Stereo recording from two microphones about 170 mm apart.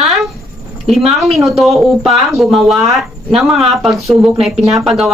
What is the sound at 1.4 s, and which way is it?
Speech, centre (ahead or behind).